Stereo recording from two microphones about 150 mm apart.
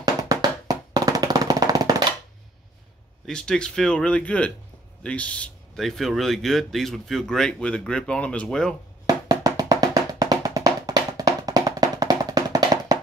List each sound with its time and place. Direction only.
0.0 s music: 25° right (ahead or behind)
3.3 s speech: 5° left (ahead or behind)
9.0 s music: 25° right (ahead or behind)